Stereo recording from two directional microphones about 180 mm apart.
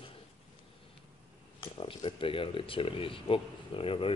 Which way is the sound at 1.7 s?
30° left (ahead or behind).